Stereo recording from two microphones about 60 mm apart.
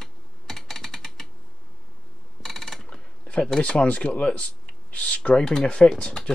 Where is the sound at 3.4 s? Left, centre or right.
Centre.